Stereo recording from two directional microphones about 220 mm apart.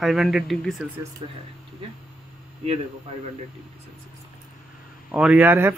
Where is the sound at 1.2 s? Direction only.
25° right (ahead or behind).